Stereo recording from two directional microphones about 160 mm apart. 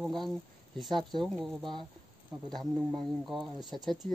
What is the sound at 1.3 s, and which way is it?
Speech, centre (ahead or behind).